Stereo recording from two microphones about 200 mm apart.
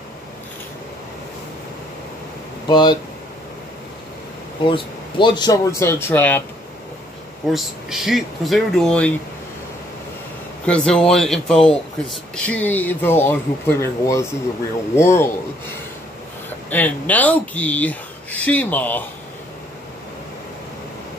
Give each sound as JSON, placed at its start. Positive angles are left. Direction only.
{"t": 2.7, "sound": "speech", "side_deg": 20}
{"t": 4.6, "sound": "speech", "side_deg": 25}
{"t": 7.5, "sound": "speech", "side_deg": 0}
{"t": 10.6, "sound": "speech", "side_deg": 5}